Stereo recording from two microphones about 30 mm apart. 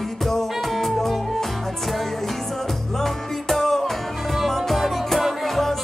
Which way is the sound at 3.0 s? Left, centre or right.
Centre.